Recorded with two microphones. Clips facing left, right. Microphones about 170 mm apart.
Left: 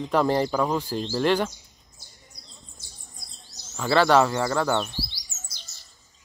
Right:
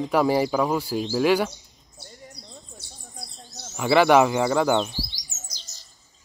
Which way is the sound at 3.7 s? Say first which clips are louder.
Right 2 dB; 15° right (ahead or behind).